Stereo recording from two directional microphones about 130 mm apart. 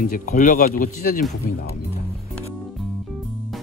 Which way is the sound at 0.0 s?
90° left.